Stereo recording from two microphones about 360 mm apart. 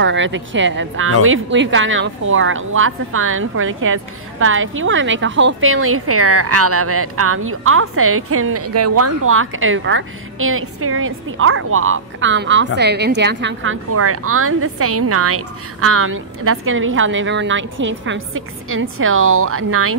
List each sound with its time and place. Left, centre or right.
0.0 s speech: right